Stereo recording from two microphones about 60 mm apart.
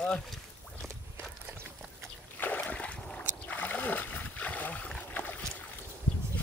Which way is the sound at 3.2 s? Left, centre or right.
Left.